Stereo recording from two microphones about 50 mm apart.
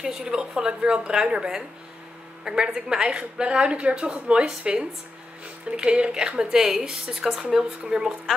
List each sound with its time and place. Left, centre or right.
0.0 s a woman's voice: centre